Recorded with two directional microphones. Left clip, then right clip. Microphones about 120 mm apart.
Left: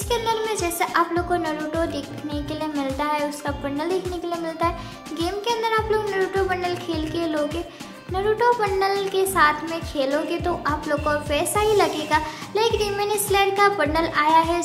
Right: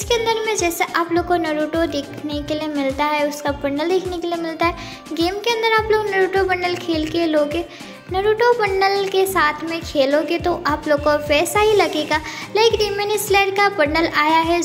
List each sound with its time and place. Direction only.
0.1 s music: 25° right (ahead or behind)